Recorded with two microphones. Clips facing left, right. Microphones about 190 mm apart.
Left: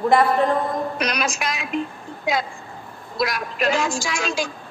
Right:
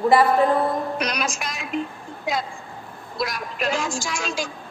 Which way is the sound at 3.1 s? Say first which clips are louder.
Left 4 dB; 75° left (ahead or behind).